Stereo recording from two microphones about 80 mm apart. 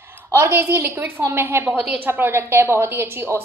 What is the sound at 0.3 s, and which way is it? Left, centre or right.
A woman's voice, right.